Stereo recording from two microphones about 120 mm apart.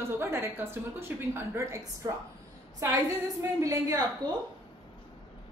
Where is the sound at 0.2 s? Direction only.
20° right (ahead or behind).